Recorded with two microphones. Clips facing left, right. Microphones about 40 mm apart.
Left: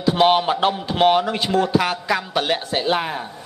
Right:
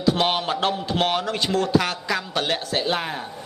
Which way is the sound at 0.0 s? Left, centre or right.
Centre.